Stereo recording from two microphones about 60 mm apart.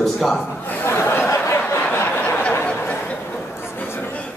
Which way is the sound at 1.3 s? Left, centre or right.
Left.